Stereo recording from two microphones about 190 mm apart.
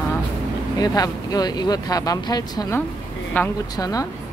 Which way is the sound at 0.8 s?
20° left (ahead or behind).